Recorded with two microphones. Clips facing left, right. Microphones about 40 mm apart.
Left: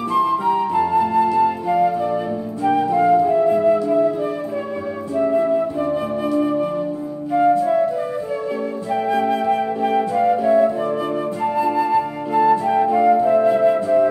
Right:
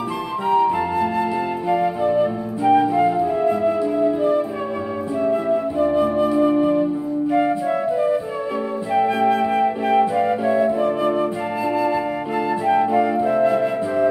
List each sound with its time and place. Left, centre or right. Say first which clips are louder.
0.1 s flute: left 4 dB; centre
7.3 s music: left 6 dB; centre
8.9 s flute: right 2 dB; centre